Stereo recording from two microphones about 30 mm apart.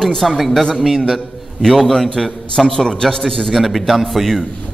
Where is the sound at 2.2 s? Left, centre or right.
Centre.